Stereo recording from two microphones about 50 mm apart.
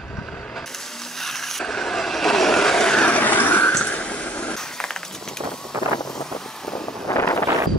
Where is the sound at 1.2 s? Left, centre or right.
Centre.